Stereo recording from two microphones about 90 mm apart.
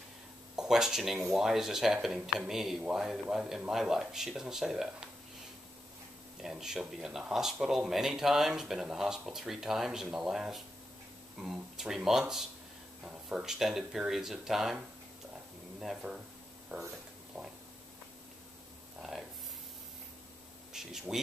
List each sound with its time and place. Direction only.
0.6 s speech: 5° right (ahead or behind)
6.4 s speech: 5° right (ahead or behind)
16.0 s speech: 15° right (ahead or behind)
20.7 s speech: 5° right (ahead or behind)